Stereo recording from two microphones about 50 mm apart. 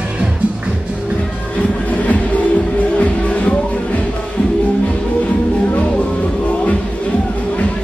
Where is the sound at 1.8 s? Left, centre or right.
Left.